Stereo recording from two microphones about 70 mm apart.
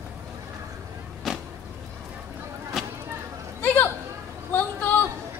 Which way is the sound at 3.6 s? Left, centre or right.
Left.